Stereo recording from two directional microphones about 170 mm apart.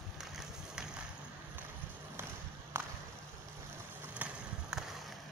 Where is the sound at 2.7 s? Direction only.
15° right (ahead or behind).